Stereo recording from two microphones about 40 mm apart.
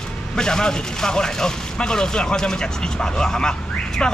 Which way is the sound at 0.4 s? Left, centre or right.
Centre.